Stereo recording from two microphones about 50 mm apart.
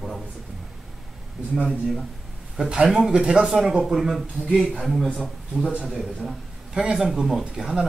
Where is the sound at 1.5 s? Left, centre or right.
Centre.